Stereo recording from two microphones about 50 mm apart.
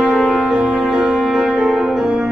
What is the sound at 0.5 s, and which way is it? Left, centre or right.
Music, centre.